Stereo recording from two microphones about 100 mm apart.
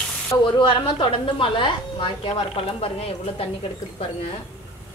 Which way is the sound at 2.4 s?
75° left (ahead or behind).